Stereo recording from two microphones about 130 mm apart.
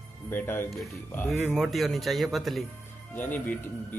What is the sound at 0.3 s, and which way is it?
Speech, 15° left (ahead or behind).